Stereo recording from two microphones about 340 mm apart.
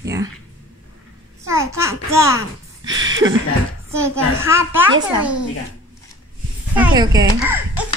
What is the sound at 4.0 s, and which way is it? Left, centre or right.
A child's voice, centre.